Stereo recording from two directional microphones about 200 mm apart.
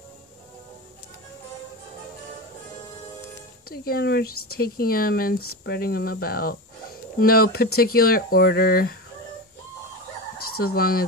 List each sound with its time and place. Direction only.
3.6 s speech: 50° left (ahead or behind)
10.6 s speech: 50° left (ahead or behind)